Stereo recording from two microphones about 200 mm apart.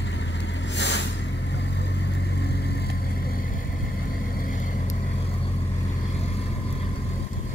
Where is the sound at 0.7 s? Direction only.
60° left (ahead or behind).